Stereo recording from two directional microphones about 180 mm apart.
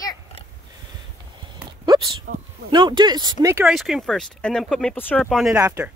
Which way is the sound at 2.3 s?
50° right (ahead or behind).